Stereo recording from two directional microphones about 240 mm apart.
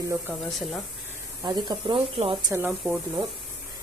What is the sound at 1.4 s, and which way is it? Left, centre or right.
Speech, centre.